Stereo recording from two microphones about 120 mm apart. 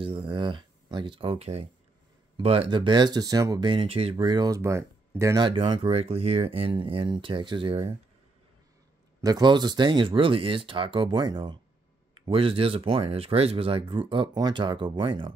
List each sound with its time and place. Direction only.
0.0 s speech: 45° right (ahead or behind)
4.6 s speech: 25° right (ahead or behind)
5.2 s speech: 35° right (ahead or behind)
9.2 s speech: 35° right (ahead or behind)
12.3 s speech: 50° right (ahead or behind)